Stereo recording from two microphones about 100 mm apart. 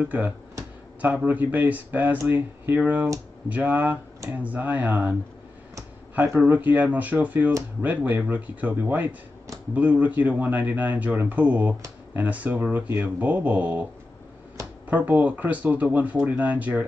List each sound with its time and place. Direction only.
0.0 s speech: 15° right (ahead or behind)
6.3 s speech: 15° right (ahead or behind)
14.9 s speech: 15° right (ahead or behind)